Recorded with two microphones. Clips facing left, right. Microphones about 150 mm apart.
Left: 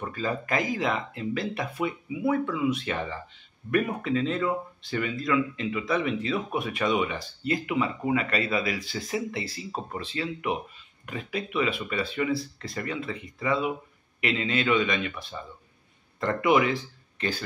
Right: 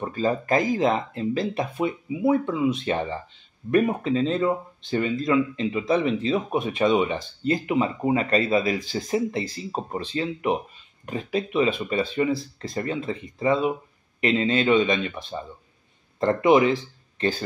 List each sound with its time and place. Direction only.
0.0 s speech: 30° right (ahead or behind)
8.7 s speech: 40° right (ahead or behind)